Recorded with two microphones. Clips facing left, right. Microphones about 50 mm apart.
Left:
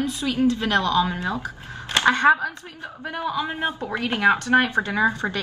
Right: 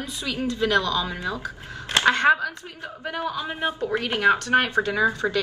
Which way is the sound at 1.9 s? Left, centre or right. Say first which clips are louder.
Left 1 dB; left.